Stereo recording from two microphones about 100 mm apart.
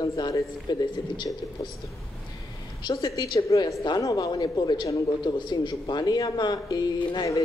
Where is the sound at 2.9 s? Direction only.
35° left (ahead or behind).